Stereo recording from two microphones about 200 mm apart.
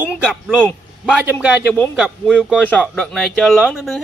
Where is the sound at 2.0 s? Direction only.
5° right (ahead or behind).